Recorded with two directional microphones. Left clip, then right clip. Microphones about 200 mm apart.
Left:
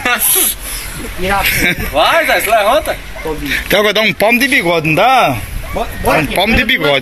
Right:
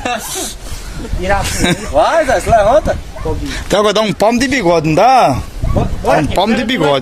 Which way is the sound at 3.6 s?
15° right (ahead or behind).